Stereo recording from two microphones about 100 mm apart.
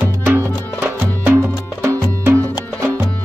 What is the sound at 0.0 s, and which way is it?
Music, 25° right (ahead or behind).